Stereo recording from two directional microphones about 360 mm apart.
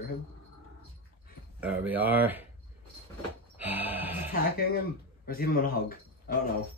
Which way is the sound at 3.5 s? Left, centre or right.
Centre.